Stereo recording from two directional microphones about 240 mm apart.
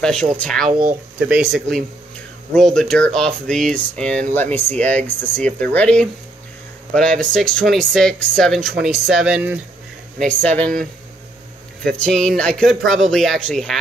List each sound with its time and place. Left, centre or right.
0.0 s speech: centre
0.7 s speech: right
1.2 s speech: centre
10.2 s speech: centre